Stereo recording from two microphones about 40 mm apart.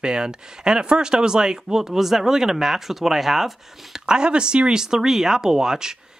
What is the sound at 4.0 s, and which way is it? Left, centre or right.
Speech, right.